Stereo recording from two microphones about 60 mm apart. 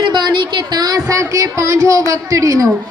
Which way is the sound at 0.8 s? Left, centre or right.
Right.